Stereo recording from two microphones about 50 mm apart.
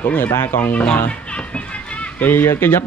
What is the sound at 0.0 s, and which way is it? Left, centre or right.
Speech, left.